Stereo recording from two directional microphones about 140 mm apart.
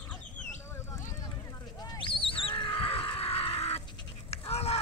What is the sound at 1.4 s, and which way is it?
Horse, 25° left (ahead or behind).